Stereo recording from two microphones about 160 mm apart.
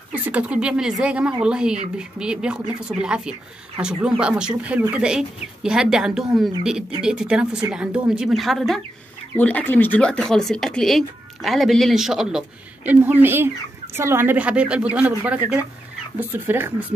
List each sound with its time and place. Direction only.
0.1 s speech: 10° right (ahead or behind)